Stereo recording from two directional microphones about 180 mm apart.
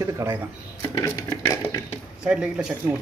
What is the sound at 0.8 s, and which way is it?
Dishes, 20° left (ahead or behind).